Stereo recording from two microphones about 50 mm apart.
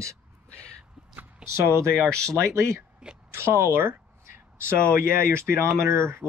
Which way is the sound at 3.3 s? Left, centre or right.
Right.